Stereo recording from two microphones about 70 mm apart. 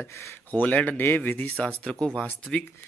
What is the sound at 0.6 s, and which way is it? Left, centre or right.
Speech, left.